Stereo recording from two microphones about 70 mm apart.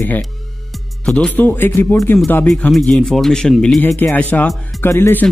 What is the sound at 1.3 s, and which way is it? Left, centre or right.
Speech, left.